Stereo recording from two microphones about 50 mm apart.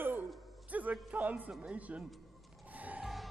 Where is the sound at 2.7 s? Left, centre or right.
Right.